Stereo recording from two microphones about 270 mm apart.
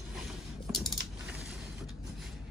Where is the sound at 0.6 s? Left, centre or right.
Centre.